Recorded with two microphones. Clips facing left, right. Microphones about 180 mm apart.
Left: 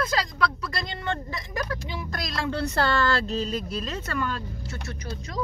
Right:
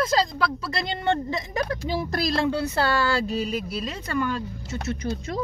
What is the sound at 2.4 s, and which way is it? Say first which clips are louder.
Speech: right 2 dB; 10° right (ahead or behind).